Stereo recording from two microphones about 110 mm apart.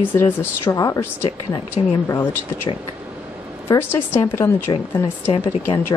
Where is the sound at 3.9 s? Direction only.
20° left (ahead or behind).